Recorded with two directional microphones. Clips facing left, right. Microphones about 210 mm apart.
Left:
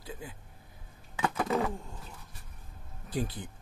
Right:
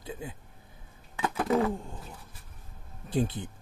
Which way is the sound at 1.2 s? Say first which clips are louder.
Right 3 dB; 5° right (ahead or behind).